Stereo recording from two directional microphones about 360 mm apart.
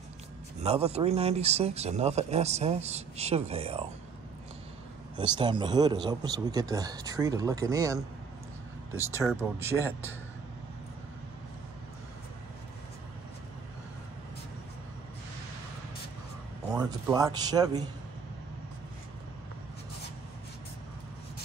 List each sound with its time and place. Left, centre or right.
0.6 s speech: centre
5.1 s speech: centre
9.1 s speech: centre
16.7 s speech: centre